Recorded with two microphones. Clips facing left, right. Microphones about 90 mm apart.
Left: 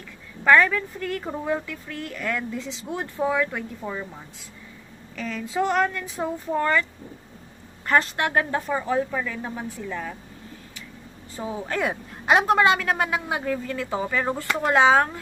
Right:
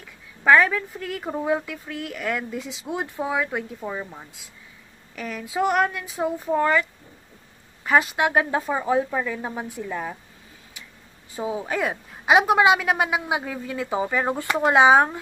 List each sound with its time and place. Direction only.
0.4 s speech: 10° right (ahead or behind)
11.3 s speech: 15° right (ahead or behind)
11.8 s speech: 5° right (ahead or behind)